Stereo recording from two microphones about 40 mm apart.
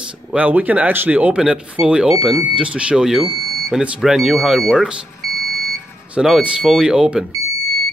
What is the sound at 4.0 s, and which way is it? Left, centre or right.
Speech, centre.